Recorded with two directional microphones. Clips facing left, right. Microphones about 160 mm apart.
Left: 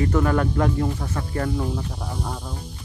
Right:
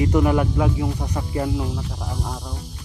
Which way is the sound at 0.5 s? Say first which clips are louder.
Even; 5° right (ahead or behind).